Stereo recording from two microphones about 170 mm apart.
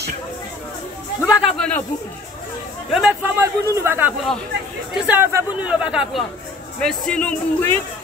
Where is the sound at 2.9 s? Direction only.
5° right (ahead or behind).